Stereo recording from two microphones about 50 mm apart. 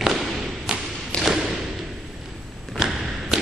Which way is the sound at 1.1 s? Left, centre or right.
Centre.